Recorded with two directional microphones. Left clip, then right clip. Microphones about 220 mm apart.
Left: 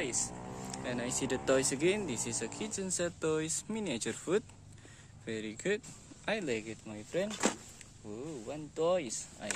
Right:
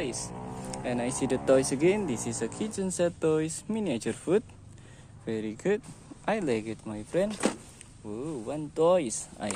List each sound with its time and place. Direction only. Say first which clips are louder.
0.7 s speech: right 6 dB; 10° right (ahead or behind); by 9.5 s 25° right (ahead or behind)